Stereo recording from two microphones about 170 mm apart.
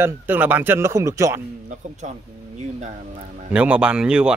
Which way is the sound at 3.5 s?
5° right (ahead or behind).